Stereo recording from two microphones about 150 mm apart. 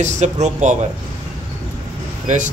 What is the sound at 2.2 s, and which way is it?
Speech, 55° right (ahead or behind).